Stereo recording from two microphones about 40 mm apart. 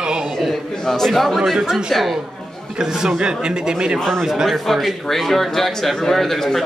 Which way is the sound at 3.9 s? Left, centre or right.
Centre.